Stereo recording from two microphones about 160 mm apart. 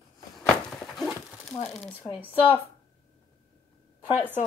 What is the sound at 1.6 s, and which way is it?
Speech, 5° left (ahead or behind).